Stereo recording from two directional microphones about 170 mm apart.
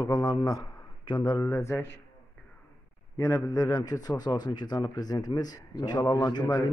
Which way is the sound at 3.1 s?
20° left (ahead or behind).